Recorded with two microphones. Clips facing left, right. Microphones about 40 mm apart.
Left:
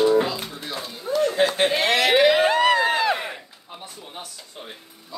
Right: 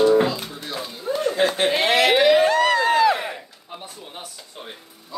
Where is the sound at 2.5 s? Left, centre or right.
Centre.